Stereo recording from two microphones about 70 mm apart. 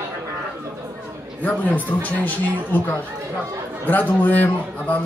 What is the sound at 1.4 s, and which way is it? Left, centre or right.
A man's voice, left.